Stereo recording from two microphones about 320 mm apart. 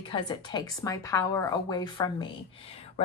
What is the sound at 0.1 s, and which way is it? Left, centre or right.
A woman's voice, centre.